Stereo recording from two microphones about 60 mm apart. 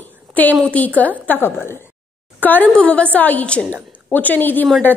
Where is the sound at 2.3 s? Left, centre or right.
Left.